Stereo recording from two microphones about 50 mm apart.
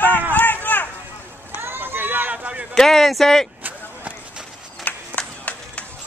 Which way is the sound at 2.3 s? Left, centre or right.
Right.